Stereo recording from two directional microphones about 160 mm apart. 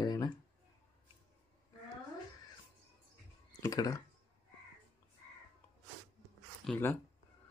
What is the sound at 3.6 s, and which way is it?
Speech, 20° left (ahead or behind).